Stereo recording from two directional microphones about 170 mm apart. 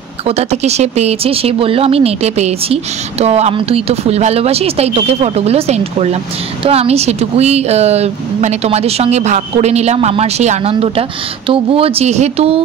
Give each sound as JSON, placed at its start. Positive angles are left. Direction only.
{"t": 0.3, "sound": "speech", "side_deg": -40}